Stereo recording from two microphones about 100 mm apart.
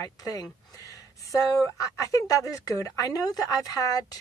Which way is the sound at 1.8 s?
35° left (ahead or behind).